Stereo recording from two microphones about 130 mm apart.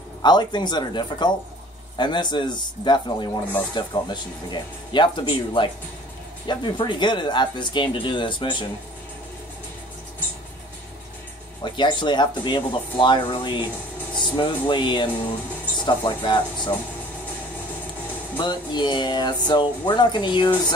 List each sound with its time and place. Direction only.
0.2 s speech: 35° left (ahead or behind)
11.6 s speech: 35° left (ahead or behind)
18.4 s speech: 35° left (ahead or behind)